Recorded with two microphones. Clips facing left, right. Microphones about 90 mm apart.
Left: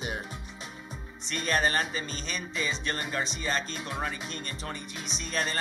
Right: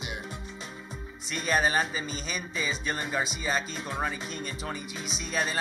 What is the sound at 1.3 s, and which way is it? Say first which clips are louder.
Speech: right 1 dB; 5° right (ahead or behind).